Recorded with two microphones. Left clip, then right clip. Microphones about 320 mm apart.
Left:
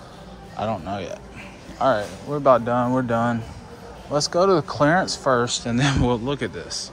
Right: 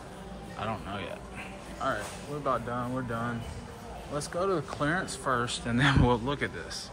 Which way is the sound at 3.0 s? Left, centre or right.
Centre.